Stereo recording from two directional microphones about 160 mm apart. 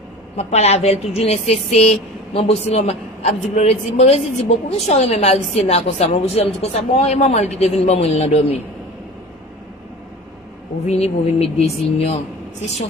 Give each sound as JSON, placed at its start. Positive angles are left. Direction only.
{"t": 0.4, "sound": "a woman's voice", "side_deg": 40}
{"t": 10.9, "sound": "a woman's voice", "side_deg": 40}